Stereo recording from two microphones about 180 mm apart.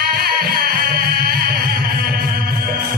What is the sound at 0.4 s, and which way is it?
Music, 55° right (ahead or behind).